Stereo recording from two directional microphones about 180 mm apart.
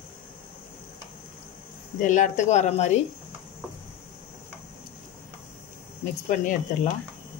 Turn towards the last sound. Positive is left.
turn(degrees=40)  # may be behind; listen again after turning